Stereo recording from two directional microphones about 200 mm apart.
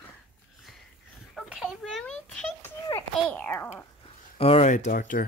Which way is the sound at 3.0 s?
10° left (ahead or behind).